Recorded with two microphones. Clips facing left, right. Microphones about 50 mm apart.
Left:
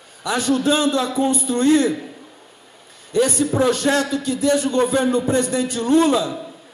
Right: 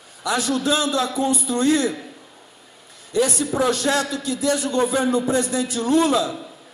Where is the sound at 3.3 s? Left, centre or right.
Centre.